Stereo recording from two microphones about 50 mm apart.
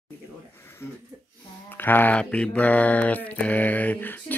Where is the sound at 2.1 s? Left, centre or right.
Left.